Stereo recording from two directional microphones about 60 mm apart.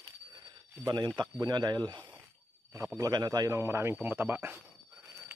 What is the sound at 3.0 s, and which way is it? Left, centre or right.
Speech, right.